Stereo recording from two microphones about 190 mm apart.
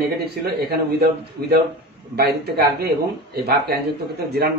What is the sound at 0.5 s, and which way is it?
A man's voice, 55° right (ahead or behind).